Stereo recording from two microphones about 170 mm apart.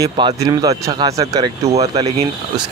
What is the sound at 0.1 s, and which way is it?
Speech, 35° right (ahead or behind).